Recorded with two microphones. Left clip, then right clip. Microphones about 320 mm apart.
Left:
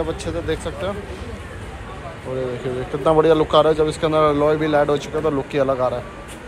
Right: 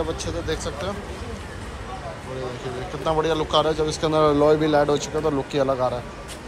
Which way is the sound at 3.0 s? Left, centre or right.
Centre.